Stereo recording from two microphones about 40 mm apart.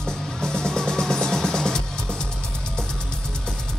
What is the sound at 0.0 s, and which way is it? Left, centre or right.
Music, centre.